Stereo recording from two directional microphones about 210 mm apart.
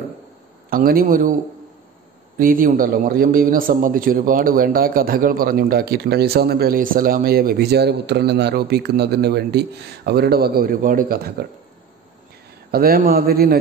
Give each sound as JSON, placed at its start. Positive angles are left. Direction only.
{"t": 0.7, "sound": "a man's voice", "side_deg": -45}
{"t": 2.3, "sound": "a man's voice", "side_deg": -40}
{"t": 12.7, "sound": "a man's voice", "side_deg": -45}